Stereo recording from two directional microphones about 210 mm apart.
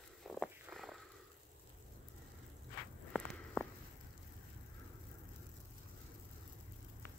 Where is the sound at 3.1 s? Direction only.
5° left (ahead or behind).